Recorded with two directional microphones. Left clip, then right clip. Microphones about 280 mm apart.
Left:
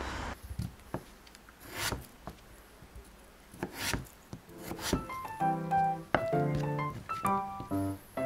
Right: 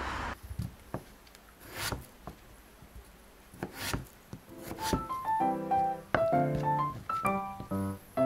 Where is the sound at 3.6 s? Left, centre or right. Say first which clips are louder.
Left 1 dB; centre.